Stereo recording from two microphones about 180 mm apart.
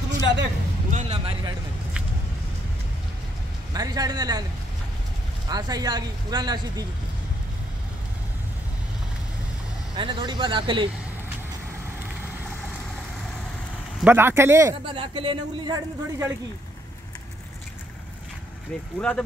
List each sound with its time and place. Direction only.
0.2 s a sound: 75° right (ahead or behind)
0.8 s a sound: 40° right (ahead or behind)
1.1 s speech: 25° right (ahead or behind)
3.7 s speech: 20° right (ahead or behind)
5.5 s speech: 20° right (ahead or behind)
9.9 s speech: 25° right (ahead or behind)
14.0 s speech: 10° right (ahead or behind)
14.9 s speech: 30° right (ahead or behind)
18.9 s speech: 5° left (ahead or behind)